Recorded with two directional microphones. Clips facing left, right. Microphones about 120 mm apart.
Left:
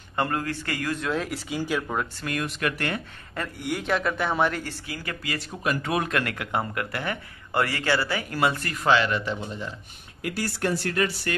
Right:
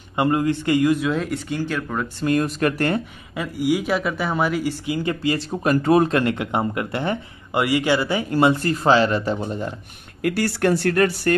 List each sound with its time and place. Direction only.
0.1 s speech: 15° right (ahead or behind)
0.9 s speech: centre (ahead or behind)
2.1 s speech: 30° right (ahead or behind)
3.3 s speech: 5° right (ahead or behind); by 9.8 s 45° right (ahead or behind)
10.2 s speech: 65° right (ahead or behind)